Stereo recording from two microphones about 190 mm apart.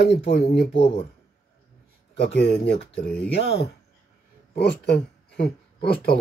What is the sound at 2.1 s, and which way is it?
Speech, 65° left (ahead or behind).